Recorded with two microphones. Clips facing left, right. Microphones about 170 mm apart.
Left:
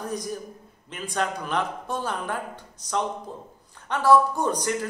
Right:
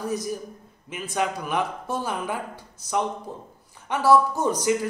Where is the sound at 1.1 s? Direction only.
10° right (ahead or behind).